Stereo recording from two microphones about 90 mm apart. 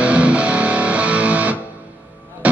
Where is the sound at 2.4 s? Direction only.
15° right (ahead or behind).